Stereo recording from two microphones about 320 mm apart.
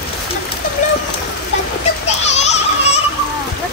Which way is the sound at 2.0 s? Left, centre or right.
Left.